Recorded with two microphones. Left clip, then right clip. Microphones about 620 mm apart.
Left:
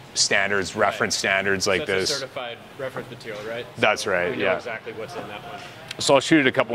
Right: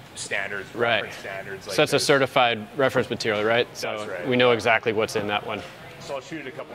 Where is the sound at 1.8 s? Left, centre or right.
Right.